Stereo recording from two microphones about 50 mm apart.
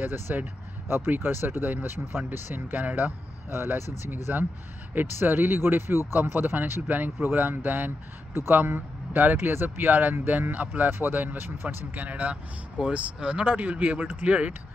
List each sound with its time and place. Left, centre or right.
0.0 s speech: right
3.5 s speech: right
4.1 s speech: right
11.9 s speech: right